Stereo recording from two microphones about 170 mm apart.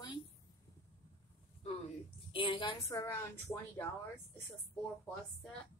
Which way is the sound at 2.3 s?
30° left (ahead or behind).